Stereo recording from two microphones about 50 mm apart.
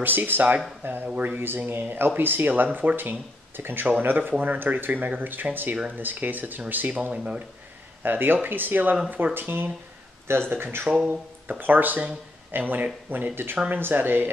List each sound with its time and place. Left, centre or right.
0.0 s speech: right
0.8 s speech: right
7.0 s speech: right
8.0 s speech: right